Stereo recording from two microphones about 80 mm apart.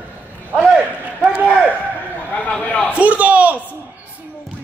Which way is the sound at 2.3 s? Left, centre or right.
Centre.